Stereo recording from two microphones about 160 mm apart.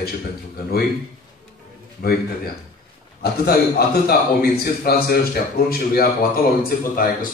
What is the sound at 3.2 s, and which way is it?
A man's voice, 75° left (ahead or behind).